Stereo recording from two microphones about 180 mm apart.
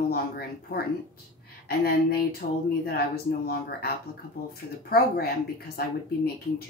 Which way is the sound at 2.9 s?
60° left (ahead or behind).